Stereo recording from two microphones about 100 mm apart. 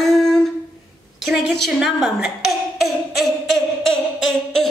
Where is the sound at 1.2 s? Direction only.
5° right (ahead or behind).